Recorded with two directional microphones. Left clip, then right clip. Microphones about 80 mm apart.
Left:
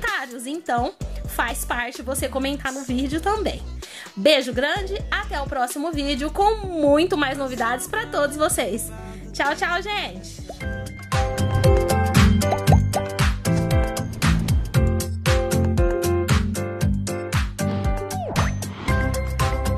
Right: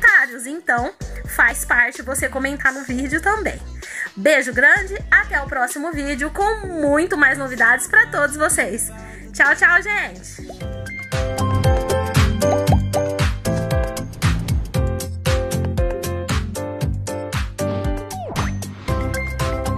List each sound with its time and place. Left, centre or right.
0.0 s a sound: left
0.7 s a woman's voice: left
10.6 s music: centre